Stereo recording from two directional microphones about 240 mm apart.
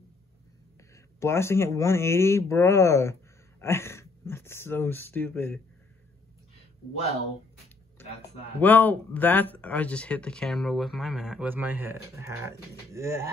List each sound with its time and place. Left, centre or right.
1.2 s speech: centre
8.5 s speech: centre